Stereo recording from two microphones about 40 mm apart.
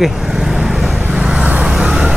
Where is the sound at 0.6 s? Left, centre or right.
Centre.